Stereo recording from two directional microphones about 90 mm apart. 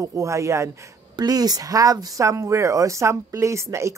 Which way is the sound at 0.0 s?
35° right (ahead or behind).